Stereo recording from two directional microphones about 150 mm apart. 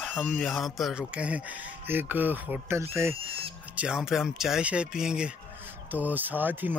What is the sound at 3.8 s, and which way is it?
Speech, 5° right (ahead or behind).